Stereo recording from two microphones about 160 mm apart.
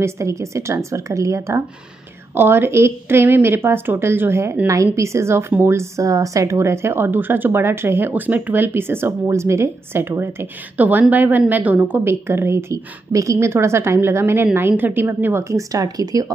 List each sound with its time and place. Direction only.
0.0 s a woman's voice: 20° right (ahead or behind)